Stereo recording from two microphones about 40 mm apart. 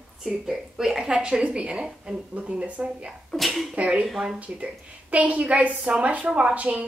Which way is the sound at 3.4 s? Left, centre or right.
Centre.